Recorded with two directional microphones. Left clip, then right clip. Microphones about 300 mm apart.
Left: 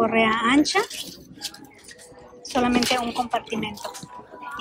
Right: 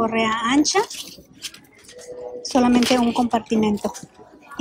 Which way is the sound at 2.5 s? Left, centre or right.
Centre.